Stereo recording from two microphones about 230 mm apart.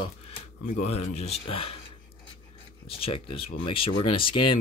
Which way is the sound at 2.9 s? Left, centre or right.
Left.